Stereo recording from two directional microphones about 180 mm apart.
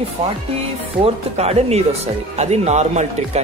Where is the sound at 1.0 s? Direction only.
35° right (ahead or behind).